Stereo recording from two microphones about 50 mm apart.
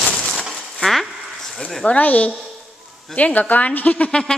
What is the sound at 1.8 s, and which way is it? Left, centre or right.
A woman's voice, left.